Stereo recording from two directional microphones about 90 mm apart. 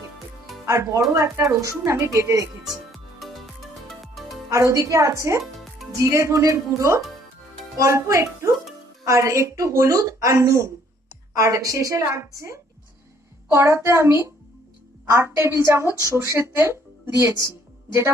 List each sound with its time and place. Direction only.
0.7 s a woman's voice: 35° right (ahead or behind)
2.6 s music: centre (ahead or behind)
4.5 s a woman's voice: 35° right (ahead or behind)